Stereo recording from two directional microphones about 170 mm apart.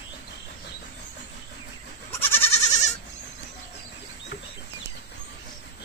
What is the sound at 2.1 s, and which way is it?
Goat, 15° left (ahead or behind).